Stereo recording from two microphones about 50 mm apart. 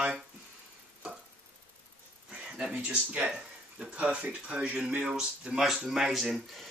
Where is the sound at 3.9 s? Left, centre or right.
Right.